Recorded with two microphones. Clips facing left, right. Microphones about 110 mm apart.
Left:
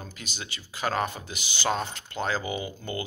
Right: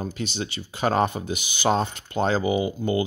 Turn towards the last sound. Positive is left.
turn(degrees=-20)  # may be behind; listen again after turning